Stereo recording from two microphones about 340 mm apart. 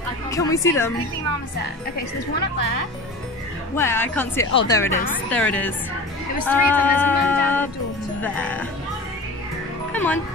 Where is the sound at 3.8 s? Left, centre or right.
Centre.